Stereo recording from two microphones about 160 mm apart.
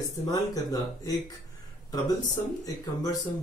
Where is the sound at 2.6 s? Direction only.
20° left (ahead or behind).